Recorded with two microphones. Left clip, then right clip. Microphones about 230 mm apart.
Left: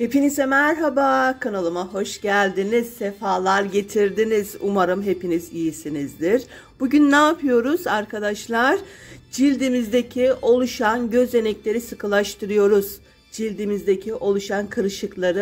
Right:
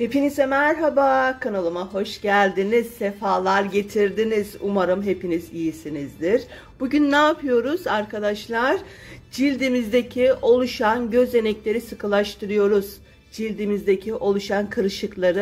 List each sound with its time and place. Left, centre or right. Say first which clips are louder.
0.0 s speech: even; centre